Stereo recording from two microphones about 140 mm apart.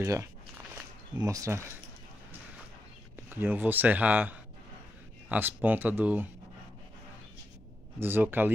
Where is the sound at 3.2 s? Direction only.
15° right (ahead or behind).